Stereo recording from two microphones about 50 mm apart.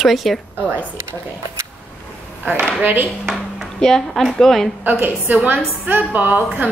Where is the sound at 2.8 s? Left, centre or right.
Right.